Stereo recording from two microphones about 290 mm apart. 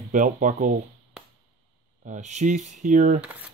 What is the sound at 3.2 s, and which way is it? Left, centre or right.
Speech, centre.